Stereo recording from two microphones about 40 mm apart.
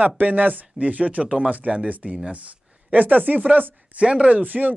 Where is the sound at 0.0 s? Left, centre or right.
Right.